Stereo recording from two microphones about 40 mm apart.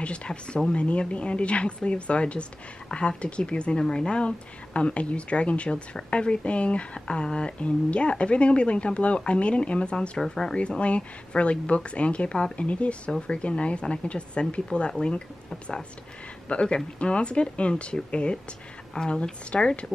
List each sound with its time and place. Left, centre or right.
0.0 s speech: left
10.1 s speech: centre
10.8 s speech: left
12.5 s speech: left
16.4 s speech: left